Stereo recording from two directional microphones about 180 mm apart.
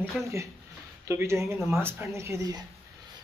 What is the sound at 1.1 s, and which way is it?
Speech, 15° right (ahead or behind).